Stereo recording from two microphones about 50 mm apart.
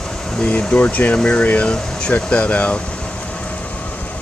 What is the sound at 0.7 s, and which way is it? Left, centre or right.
Speech, left.